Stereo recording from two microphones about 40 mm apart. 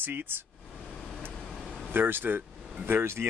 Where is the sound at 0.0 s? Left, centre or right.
Right.